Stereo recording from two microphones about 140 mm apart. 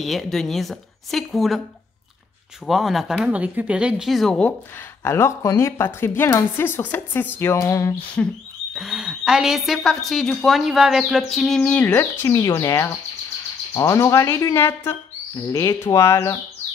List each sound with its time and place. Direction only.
0.0 s a woman's voice: centre (ahead or behind)
2.6 s a woman's voice: centre (ahead or behind)
5.0 s a woman's voice: 20° left (ahead or behind)
8.2 s a woman's voice: 5° left (ahead or behind)
8.7 s a woman's voice: 5° right (ahead or behind); by 16.3 s 20° left (ahead or behind)